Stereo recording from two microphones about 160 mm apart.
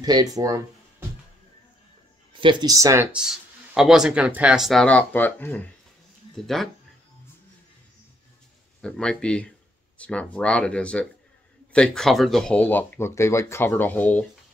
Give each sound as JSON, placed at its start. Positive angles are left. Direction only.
{"t": 0.0, "sound": "speech", "side_deg": -25}
{"t": 2.3, "sound": "speech", "side_deg": -25}
{"t": 3.1, "sound": "speech", "side_deg": -5}
{"t": 8.8, "sound": "speech", "side_deg": 5}